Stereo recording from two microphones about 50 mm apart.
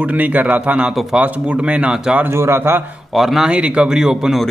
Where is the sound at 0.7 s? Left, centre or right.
Right.